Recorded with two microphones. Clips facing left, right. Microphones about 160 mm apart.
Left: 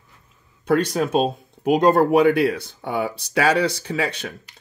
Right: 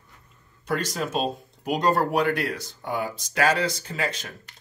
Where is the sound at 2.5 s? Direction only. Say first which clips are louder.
Left 4 dB; 65° left (ahead or behind).